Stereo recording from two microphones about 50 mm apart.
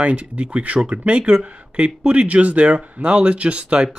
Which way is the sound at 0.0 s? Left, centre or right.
Right.